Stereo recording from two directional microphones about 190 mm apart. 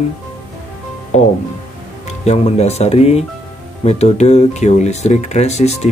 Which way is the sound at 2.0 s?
35° left (ahead or behind).